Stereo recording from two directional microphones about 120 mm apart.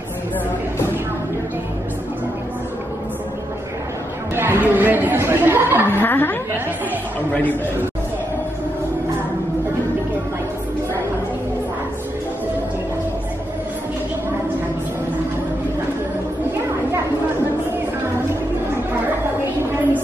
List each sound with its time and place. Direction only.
4.4 s speech: 15° right (ahead or behind)
5.9 s a woman's voice: 15° left (ahead or behind)